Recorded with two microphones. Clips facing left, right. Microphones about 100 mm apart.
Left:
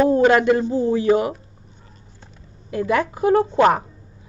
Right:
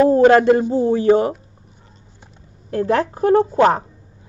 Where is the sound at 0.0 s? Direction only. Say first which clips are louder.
Right 4 dB; 35° right (ahead or behind).